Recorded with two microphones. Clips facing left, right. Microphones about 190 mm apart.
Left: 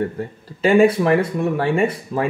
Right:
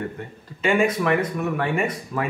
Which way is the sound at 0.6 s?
35° left (ahead or behind).